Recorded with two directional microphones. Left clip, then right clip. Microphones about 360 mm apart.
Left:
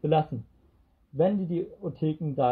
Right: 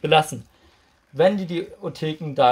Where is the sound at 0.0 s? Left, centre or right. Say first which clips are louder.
Right 8 dB; centre.